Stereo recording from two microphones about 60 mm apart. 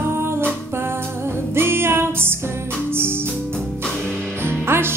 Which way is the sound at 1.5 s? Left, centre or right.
Right.